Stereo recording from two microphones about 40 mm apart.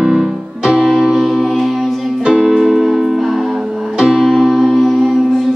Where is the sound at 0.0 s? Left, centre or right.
Centre.